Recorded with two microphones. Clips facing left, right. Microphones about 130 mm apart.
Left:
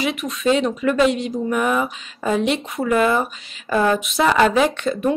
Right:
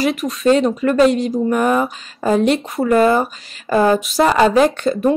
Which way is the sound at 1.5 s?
40° right (ahead or behind).